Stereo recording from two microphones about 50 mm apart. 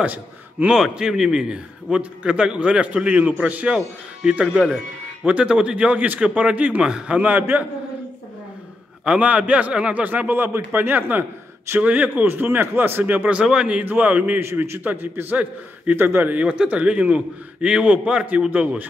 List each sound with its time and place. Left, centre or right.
0.0 s a man's voice: right
0.7 s a man's voice: centre; by 3.6 s right
3.6 s a man's voice: centre
7.2 s a man's voice: right
9.0 s a man's voice: right
10.0 s a man's voice: right
11.8 s a man's voice: right
13.4 s a man's voice: centre
13.7 s a man's voice: right
15.0 s a man's voice: right
16.4 s a man's voice: right